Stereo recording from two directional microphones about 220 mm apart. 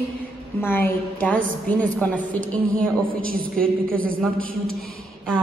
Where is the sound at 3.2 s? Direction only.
40° right (ahead or behind).